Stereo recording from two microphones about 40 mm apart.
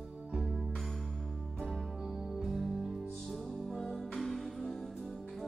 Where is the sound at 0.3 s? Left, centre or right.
Centre.